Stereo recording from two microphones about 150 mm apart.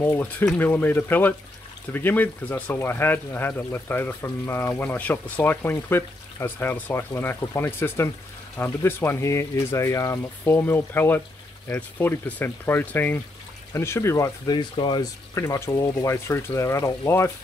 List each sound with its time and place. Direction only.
0.0 s speech: 10° left (ahead or behind)